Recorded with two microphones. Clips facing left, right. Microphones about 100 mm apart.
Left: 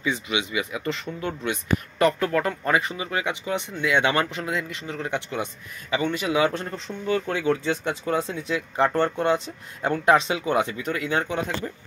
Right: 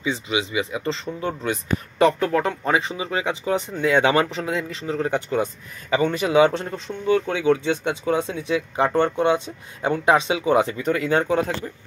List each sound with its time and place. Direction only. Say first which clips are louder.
0.0 s speech: right 2 dB; 30° right (ahead or behind)
10.4 s speech: right 5 dB; 30° right (ahead or behind)